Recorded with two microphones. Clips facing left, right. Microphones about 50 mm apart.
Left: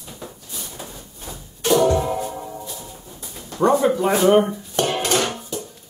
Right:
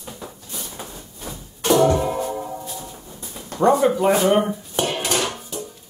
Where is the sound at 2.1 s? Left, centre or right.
Centre.